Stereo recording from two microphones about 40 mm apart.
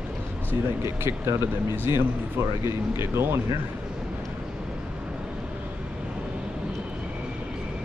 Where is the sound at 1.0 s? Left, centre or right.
Right.